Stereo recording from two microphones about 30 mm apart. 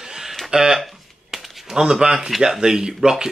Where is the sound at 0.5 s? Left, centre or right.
Centre.